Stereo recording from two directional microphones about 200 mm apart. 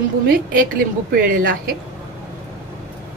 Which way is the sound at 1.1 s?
45° right (ahead or behind).